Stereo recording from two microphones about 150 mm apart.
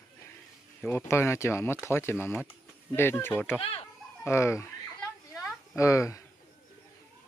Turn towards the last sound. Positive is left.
turn(degrees=20)  # may be behind; listen again after turning